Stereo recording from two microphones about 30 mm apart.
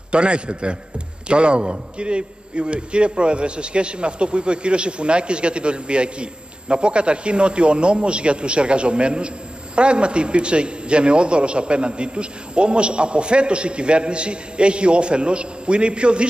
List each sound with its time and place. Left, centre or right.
0.1 s a man's voice: right